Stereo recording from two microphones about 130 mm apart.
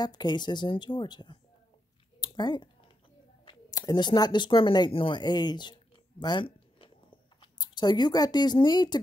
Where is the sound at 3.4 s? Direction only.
35° left (ahead or behind).